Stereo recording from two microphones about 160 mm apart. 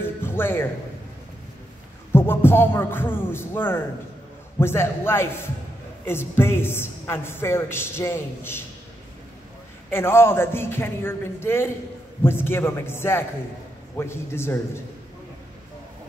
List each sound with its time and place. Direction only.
0.0 s music: 15° left (ahead or behind)
2.1 s a woman's voice: 15° left (ahead or behind)
9.8 s a woman's voice: 15° left (ahead or behind)